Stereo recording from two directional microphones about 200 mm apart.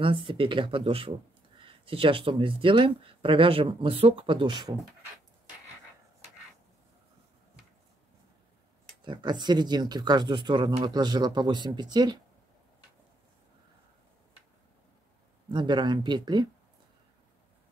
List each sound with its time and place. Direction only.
0.0 s speech: 25° right (ahead or behind)
9.0 s speech: 20° right (ahead or behind)
15.5 s speech: 20° right (ahead or behind)